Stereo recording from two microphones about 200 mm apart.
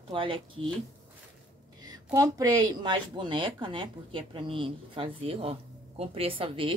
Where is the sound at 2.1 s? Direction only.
15° right (ahead or behind).